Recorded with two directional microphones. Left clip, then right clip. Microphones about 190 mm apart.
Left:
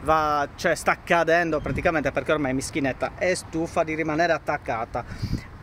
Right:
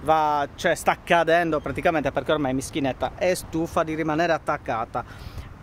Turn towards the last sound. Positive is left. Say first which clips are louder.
# right 1 dB
turn(degrees=-15)  # may be behind; listen again after turning